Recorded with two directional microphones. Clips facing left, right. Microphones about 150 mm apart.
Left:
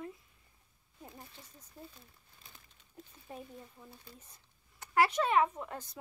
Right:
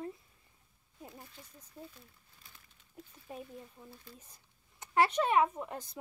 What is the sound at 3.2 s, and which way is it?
Speech, 10° right (ahead or behind).